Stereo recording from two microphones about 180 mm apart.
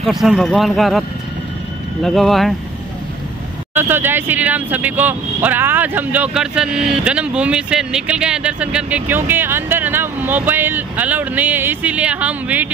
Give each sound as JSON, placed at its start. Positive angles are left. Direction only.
{"t": 0.0, "sound": "a man's voice", "side_deg": 0}
{"t": 2.0, "sound": "a man's voice", "side_deg": 0}
{"t": 3.7, "sound": "speech", "side_deg": -10}